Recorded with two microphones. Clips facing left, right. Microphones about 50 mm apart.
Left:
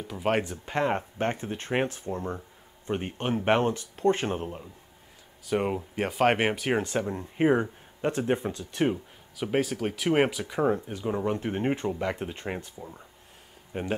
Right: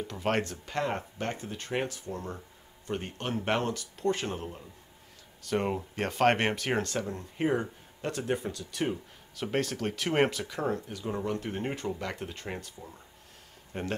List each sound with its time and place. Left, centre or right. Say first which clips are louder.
0.1 s speech: left 4 dB; centre
0.7 s speech: left 5 dB; left
5.4 s speech: left 2 dB; centre; by 9.0 s left
9.4 s speech: left 3 dB; centre
10.4 s speech: left 6 dB; centre
13.7 s speech: left 3 dB; centre